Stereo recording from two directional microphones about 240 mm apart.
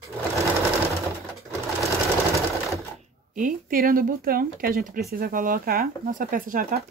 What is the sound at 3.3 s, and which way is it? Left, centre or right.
Speech, right.